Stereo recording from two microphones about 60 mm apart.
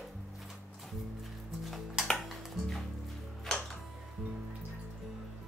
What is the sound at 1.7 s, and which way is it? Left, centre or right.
Music, centre.